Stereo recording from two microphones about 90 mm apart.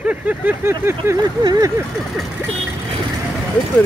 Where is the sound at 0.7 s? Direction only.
30° right (ahead or behind).